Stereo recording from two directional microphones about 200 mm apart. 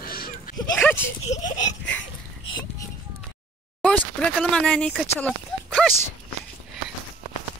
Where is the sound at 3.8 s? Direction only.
5° left (ahead or behind).